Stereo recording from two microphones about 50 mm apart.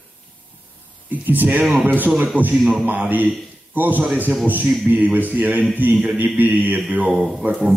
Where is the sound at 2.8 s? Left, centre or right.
Right.